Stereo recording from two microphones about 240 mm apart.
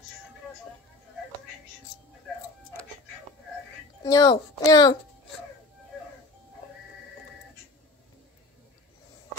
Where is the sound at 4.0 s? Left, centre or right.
Centre.